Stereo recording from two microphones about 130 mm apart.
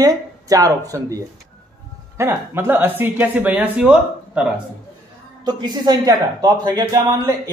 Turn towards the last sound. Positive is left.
turn(degrees=-25)  # may be behind; listen again after turning